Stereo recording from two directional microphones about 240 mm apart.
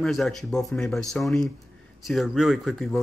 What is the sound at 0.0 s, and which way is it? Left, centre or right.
Speech, centre.